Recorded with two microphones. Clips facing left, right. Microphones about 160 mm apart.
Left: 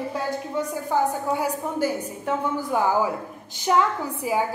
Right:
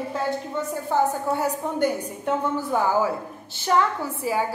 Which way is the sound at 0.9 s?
10° left (ahead or behind).